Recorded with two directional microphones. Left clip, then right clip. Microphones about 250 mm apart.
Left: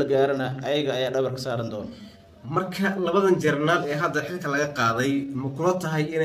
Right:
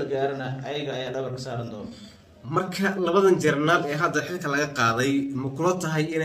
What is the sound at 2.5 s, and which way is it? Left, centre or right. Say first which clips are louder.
A man's voice: even; centre.